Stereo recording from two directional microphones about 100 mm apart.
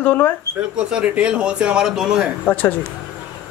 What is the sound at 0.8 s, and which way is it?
Speech, 10° right (ahead or behind).